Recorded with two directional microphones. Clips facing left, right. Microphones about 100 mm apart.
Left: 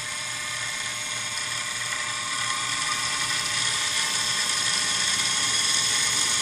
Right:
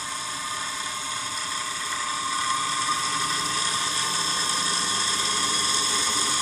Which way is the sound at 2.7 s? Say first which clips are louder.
Right 4 dB; 35° right (ahead or behind).